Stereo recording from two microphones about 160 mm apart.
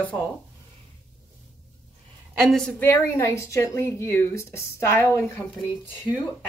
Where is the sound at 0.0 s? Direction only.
10° left (ahead or behind).